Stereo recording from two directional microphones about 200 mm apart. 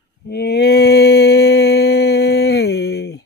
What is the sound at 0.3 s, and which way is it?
Mantra, 55° left (ahead or behind).